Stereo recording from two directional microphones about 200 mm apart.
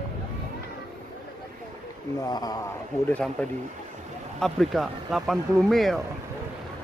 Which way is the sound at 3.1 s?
5° left (ahead or behind).